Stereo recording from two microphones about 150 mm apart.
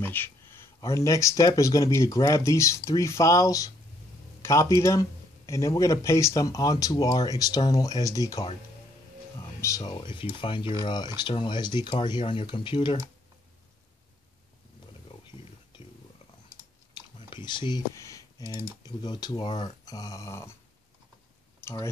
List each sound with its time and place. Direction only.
0.0 s speech: 15° left (ahead or behind)
4.4 s a sound: 20° left (ahead or behind)
4.7 s speech: 20° left (ahead or behind)
9.6 s speech: 20° left (ahead or behind)
16.9 s typing: 30° left (ahead or behind)
18.8 s speech: 30° left (ahead or behind)
21.6 s a sound: 15° left (ahead or behind)